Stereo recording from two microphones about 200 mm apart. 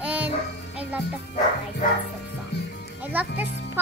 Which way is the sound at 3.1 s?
10° right (ahead or behind).